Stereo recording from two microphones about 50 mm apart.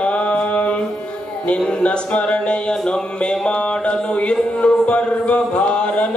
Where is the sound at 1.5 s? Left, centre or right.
Left.